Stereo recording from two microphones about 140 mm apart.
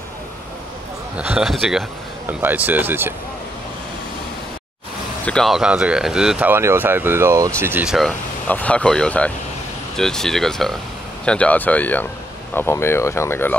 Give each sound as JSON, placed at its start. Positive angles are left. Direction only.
{"t": 1.1, "sound": "speech", "side_deg": -10}
{"t": 2.2, "sound": "speech", "side_deg": -15}
{"t": 5.2, "sound": "speech", "side_deg": 5}
{"t": 7.8, "sound": "speech", "side_deg": 0}
{"t": 8.5, "sound": "speech", "side_deg": 10}